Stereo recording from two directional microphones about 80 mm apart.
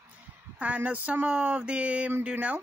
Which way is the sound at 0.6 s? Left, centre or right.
Centre.